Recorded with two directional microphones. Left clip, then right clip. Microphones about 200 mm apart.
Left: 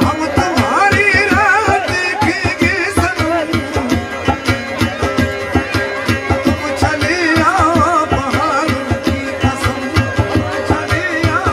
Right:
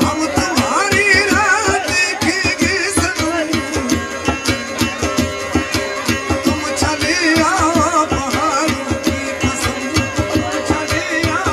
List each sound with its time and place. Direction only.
0.0 s music: 40° right (ahead or behind)
6.0 s music: 40° right (ahead or behind)